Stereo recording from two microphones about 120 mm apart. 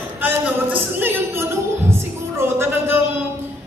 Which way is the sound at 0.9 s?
20° right (ahead or behind).